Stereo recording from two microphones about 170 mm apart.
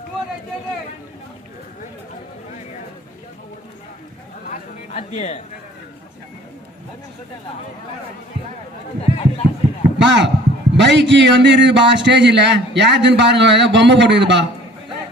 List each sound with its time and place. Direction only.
4.5 s chatter: 45° left (ahead or behind)
9.0 s speech: 35° left (ahead or behind)
9.9 s a man's voice: 90° right